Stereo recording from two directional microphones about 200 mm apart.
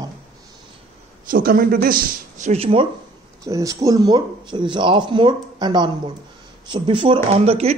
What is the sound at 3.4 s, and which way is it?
Speech, 15° right (ahead or behind).